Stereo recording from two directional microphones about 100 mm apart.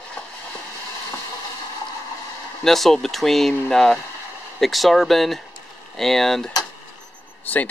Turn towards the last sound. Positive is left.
turn(degrees=15)  # may be behind; listen again after turning